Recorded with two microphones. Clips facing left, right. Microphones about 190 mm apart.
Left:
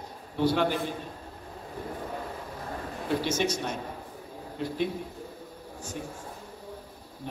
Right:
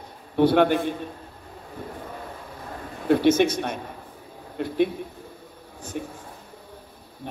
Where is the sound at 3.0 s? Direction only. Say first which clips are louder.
Right 10 dB; 60° right (ahead or behind).